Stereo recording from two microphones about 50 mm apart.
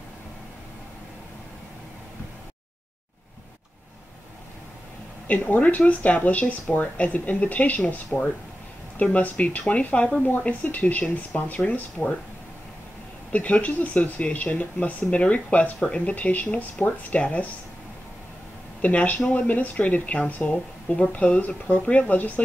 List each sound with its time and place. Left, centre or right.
5.3 s speech: left
10.2 s speech: left
13.3 s speech: left
18.8 s speech: left